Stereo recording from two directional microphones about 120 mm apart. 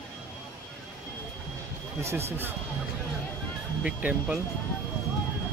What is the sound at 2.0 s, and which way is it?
Speech, 20° right (ahead or behind).